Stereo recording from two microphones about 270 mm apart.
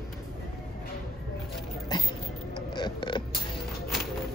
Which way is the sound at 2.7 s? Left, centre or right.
Centre.